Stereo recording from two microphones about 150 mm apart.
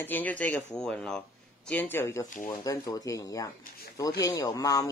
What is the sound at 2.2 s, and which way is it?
Speech, 60° left (ahead or behind).